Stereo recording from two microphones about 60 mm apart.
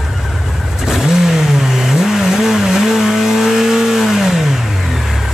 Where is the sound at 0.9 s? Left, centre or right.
Centre.